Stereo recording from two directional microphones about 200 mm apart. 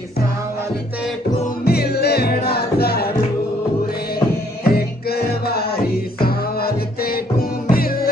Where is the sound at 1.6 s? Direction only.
50° left (ahead or behind).